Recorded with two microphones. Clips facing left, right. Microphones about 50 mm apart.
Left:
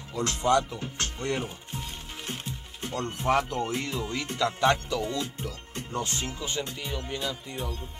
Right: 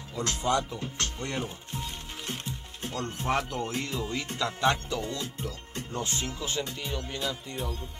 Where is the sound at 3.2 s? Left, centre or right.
Centre.